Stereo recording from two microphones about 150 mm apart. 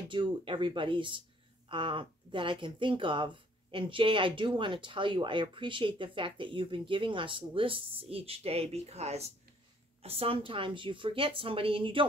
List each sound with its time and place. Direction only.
0.1 s speech: 35° right (ahead or behind)